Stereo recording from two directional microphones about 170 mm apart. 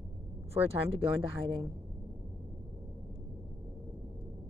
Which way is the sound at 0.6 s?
35° right (ahead or behind).